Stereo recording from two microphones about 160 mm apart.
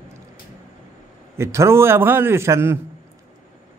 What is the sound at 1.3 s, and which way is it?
Speech, 15° right (ahead or behind).